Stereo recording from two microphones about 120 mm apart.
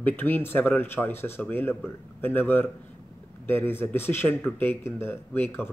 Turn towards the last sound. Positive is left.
turn(degrees=20)  # may be behind; listen again after turning